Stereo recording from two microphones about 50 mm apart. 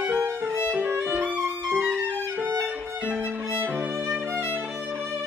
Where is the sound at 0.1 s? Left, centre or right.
Right.